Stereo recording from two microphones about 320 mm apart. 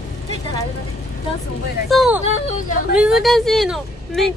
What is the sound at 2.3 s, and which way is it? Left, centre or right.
Speech, left.